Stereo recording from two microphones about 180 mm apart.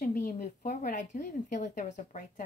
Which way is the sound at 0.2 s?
50° left (ahead or behind).